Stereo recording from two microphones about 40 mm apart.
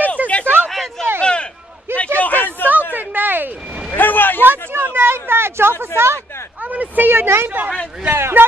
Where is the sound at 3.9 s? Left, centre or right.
Left.